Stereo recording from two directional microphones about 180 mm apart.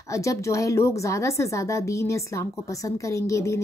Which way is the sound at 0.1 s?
15° left (ahead or behind).